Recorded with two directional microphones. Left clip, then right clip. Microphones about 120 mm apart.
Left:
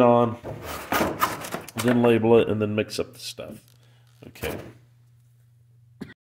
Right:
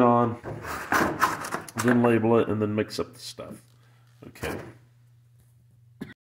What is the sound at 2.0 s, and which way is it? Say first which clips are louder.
Speech: left 5 dB; 40° left (ahead or behind).